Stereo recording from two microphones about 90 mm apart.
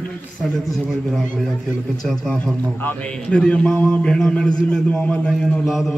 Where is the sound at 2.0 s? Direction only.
5° left (ahead or behind).